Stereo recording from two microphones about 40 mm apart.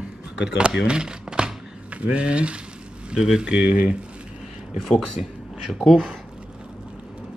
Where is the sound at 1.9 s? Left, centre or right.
Right.